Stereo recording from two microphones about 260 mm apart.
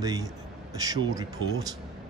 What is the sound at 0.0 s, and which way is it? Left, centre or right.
Speech, centre.